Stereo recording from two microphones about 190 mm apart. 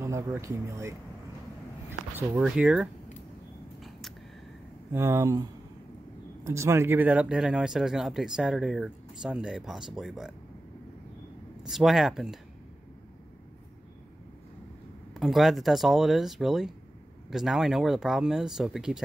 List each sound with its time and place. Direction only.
0.4 s speech: 15° right (ahead or behind)
4.9 s speech: 15° right (ahead or behind)
11.6 s speech: centre (ahead or behind)
15.1 s speech: centre (ahead or behind)